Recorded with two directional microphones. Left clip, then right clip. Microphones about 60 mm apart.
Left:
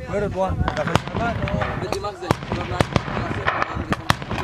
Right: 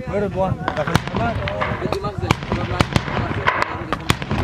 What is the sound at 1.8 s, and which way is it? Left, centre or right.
Speech, left.